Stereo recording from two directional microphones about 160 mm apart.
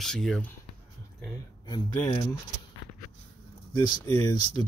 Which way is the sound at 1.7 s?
25° left (ahead or behind).